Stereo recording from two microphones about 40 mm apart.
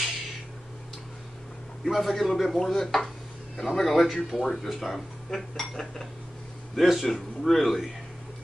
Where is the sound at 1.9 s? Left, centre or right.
Centre.